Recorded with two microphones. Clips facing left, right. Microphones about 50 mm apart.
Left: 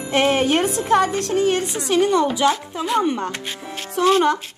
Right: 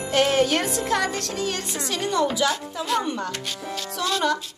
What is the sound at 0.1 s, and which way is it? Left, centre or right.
A woman's voice, left.